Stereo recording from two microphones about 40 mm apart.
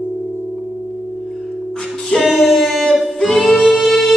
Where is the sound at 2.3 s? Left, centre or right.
Centre.